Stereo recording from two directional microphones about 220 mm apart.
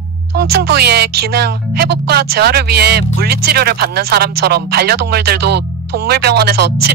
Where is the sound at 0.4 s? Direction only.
50° right (ahead or behind).